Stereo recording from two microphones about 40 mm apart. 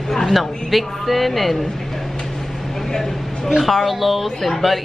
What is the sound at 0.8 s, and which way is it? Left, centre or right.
Speech, centre.